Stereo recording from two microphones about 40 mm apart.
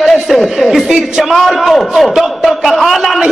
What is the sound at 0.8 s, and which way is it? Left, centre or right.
Speech, centre.